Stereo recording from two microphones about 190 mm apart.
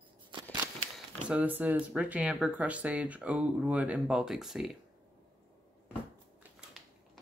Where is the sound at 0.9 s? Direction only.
5° right (ahead or behind).